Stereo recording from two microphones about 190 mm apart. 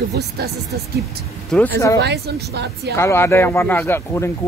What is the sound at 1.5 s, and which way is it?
Speech, 5° left (ahead or behind).